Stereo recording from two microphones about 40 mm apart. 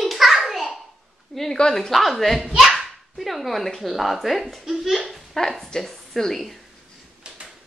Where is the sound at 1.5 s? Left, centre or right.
Centre.